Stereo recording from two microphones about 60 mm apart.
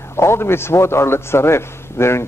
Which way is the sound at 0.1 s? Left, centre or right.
Left.